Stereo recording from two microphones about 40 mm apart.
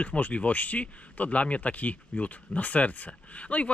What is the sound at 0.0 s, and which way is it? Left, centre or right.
Speech, left.